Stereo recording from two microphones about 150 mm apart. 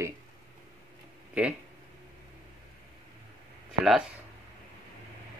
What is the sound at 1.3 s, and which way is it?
Speech, 10° right (ahead or behind).